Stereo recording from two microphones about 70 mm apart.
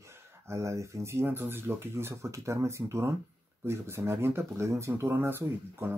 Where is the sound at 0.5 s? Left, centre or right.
Right.